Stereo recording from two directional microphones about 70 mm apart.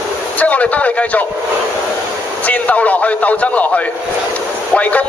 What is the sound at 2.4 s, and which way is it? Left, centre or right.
A man's voice, left.